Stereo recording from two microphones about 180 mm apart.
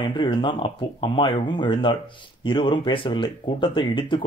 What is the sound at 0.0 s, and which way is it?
Speech, 25° left (ahead or behind).